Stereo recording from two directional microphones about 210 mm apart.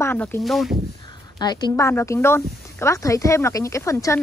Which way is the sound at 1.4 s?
20° left (ahead or behind).